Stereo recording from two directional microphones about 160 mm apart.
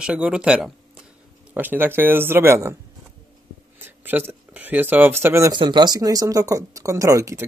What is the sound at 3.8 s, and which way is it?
Speech, 15° right (ahead or behind).